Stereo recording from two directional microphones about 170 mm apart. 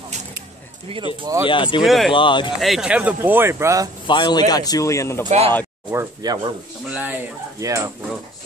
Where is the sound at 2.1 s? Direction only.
30° left (ahead or behind).